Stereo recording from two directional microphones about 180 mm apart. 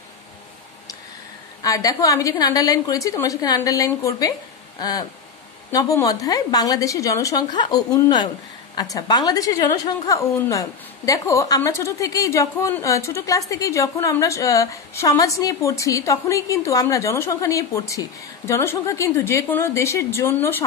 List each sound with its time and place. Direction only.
1.6 s a woman's voice: 20° left (ahead or behind)